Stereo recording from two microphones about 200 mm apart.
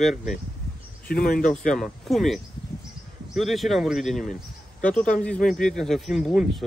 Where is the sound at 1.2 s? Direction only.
45° left (ahead or behind).